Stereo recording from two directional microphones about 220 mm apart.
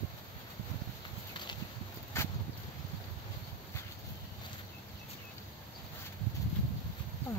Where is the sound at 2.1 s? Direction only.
10° left (ahead or behind).